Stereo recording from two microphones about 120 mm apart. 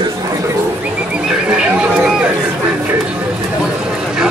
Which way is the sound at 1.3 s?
5° right (ahead or behind).